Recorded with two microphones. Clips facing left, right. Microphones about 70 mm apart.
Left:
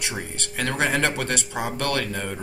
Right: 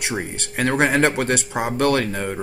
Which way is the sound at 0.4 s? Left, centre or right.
Right.